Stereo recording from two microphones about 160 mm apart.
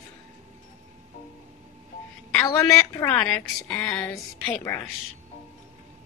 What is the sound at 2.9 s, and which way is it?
Speech, 20° left (ahead or behind).